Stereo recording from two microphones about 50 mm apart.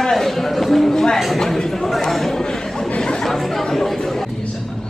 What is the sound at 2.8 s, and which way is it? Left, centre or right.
Chatter, centre.